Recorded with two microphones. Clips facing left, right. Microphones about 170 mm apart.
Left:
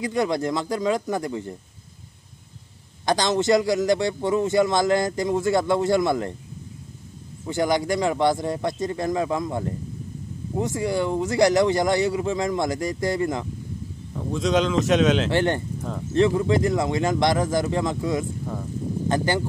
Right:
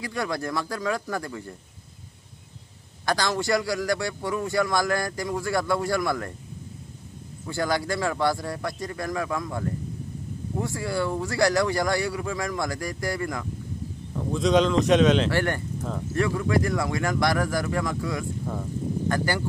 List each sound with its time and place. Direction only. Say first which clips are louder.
0.0 s a man's voice: left 6 dB; 20° left (ahead or behind)
3.1 s a man's voice: left 5 dB; 20° left (ahead or behind)
7.4 s a man's voice: left 4 dB; 20° left (ahead or behind)
14.1 s a man's voice: right 1 dB; centre (ahead or behind)
15.3 s a man's voice: left 4 dB; 20° left (ahead or behind)